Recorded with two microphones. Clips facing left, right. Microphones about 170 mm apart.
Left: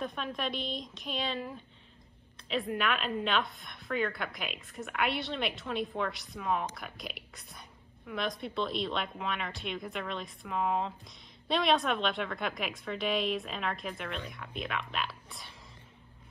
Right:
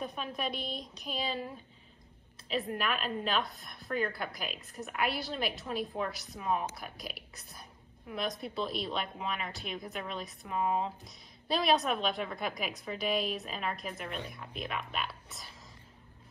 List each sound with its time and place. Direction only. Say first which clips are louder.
0.0 s a woman's voice: left 1 dB; 5° right (ahead or behind)
2.5 s a woman's voice: left 2 dB; centre (ahead or behind)